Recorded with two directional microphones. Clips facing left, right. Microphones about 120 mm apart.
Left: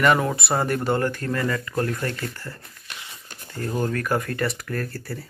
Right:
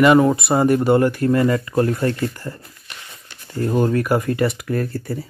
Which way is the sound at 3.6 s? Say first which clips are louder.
Right 7 dB; 25° right (ahead or behind).